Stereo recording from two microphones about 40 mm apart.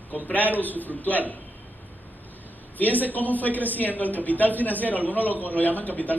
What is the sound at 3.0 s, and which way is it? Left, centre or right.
A woman's voice, left.